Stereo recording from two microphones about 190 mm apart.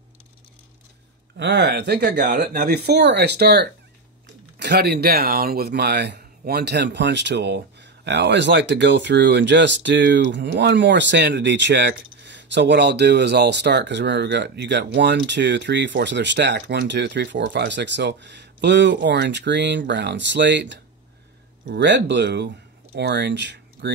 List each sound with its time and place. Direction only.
1.4 s speech: 65° right (ahead or behind)